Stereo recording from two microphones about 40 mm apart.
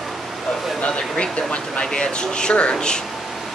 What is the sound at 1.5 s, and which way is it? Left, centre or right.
Speech, left.